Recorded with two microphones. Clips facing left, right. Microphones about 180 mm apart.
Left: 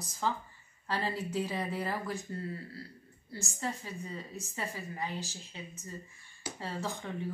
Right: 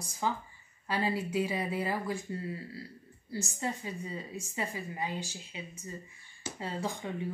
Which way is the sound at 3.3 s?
15° right (ahead or behind).